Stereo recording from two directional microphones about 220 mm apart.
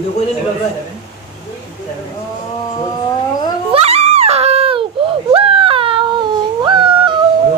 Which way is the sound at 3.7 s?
25° right (ahead or behind).